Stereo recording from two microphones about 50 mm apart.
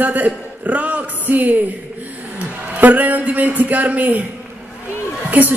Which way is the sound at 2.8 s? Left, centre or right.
Right.